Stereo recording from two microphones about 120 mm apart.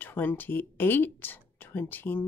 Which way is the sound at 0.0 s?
15° left (ahead or behind).